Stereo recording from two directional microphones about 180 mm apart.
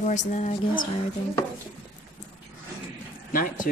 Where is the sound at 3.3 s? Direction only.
50° left (ahead or behind).